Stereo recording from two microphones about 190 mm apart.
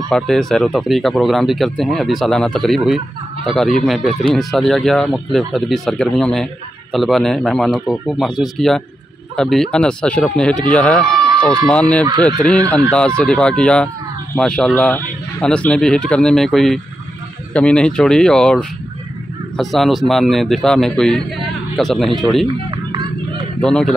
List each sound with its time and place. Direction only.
0.1 s speech: centre (ahead or behind)
22.7 s a sound: 20° right (ahead or behind)
23.6 s speech: 5° left (ahead or behind)